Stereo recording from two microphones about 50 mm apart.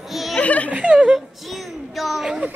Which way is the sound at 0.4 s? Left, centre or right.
Left.